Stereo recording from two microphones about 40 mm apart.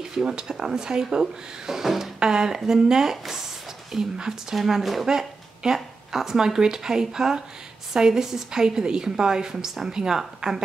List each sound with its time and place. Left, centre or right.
0.2 s speech: right